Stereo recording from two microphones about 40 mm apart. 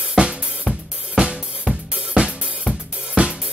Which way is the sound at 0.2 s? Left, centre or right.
Right.